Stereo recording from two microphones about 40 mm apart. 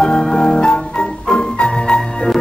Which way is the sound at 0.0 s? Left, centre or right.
Left.